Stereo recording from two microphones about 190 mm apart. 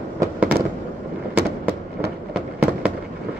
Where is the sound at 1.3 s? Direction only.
55° right (ahead or behind).